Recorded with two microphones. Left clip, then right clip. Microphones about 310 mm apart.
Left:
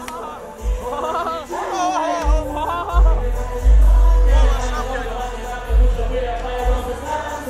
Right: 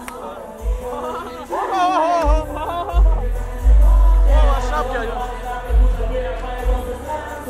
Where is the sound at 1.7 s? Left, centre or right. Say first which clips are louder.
Right 4 dB; right.